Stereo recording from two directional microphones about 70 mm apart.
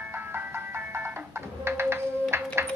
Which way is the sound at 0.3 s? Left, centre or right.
Right.